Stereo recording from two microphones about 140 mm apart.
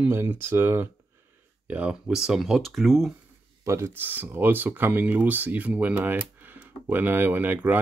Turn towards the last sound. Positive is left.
turn(degrees=-10)  # may be behind; listen again after turning